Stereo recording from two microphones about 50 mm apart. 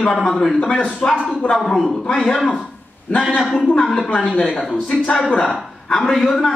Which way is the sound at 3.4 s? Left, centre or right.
Centre.